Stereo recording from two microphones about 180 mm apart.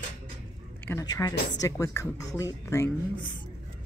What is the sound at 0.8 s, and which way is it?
Speech, 20° left (ahead or behind).